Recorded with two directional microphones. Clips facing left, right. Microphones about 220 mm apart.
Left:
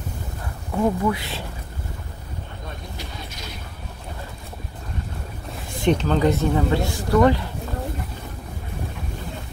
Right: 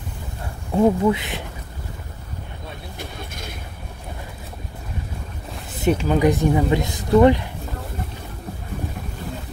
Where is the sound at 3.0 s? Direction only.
50° right (ahead or behind).